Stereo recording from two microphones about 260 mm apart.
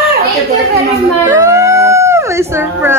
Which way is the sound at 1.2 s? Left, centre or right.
Centre.